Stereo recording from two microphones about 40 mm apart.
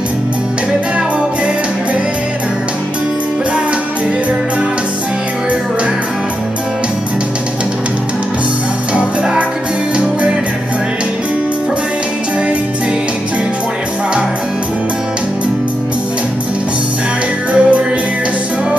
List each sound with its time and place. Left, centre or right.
17.5 s music: right